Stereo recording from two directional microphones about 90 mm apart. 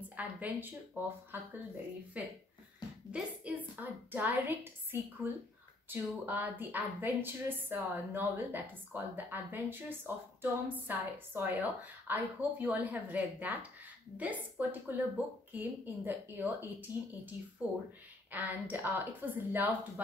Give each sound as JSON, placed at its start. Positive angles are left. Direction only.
{"t": 0.1, "sound": "a woman's voice", "side_deg": -15}
{"t": 3.1, "sound": "a sound", "side_deg": -15}
{"t": 4.1, "sound": "a woman's voice", "side_deg": -20}